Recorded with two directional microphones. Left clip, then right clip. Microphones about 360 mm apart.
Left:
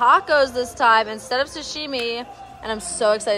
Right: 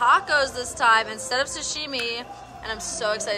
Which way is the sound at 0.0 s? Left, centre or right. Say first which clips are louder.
Left 4 dB; centre.